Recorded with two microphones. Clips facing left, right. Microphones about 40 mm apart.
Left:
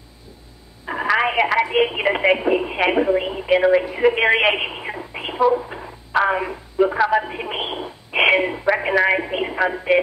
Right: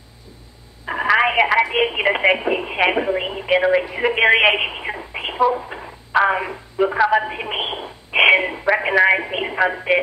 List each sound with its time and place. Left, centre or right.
0.8 s telephone: centre
1.8 s speech: centre
3.5 s a woman's voice: centre